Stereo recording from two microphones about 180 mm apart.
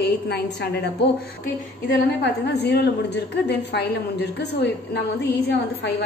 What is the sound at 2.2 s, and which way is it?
A woman's voice, 65° left (ahead or behind).